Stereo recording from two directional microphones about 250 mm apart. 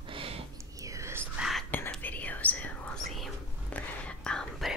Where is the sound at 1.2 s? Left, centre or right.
Centre.